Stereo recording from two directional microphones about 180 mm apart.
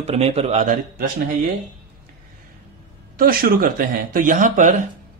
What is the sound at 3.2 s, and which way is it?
Speech, 55° right (ahead or behind).